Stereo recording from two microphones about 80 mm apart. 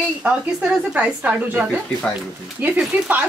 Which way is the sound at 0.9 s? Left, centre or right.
Centre.